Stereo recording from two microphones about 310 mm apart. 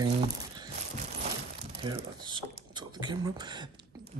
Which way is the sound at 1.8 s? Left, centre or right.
Centre.